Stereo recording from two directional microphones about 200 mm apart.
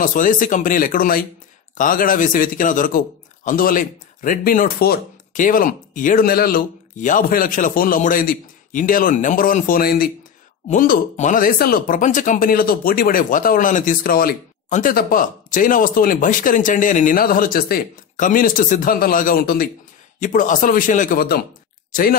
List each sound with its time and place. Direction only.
0.0 s speech: 40° left (ahead or behind)